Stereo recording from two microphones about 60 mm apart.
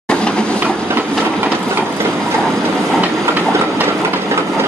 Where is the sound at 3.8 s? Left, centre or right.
Right.